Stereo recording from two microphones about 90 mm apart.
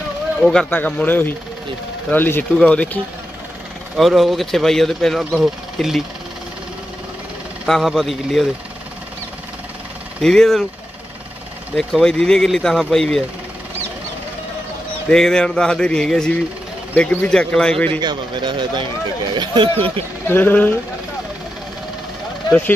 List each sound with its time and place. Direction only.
0.4 s speech: 10° left (ahead or behind)
2.5 s bird: 10° left (ahead or behind)
3.9 s speech: centre (ahead or behind)
7.6 s speech: centre (ahead or behind)
10.2 s speech: 5° left (ahead or behind)
11.7 s speech: 5° left (ahead or behind)
15.0 s bird: 5° left (ahead or behind)
16.9 s bird: 20° left (ahead or behind)
18.0 s speech: 60° right (ahead or behind)
20.2 s speech: 20° left (ahead or behind)